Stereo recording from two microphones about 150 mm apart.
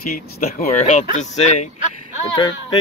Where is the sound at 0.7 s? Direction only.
55° left (ahead or behind).